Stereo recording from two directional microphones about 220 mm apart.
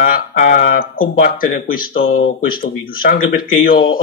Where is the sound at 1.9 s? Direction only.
65° left (ahead or behind).